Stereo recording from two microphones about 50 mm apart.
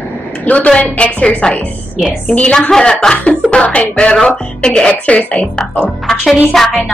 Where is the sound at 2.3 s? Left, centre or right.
Centre.